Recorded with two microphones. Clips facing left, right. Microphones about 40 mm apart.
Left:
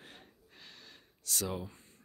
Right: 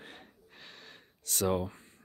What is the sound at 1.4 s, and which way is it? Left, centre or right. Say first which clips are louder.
Speech: right 9 dB; right.